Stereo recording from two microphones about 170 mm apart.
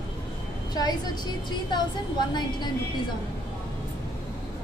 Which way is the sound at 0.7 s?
25° left (ahead or behind).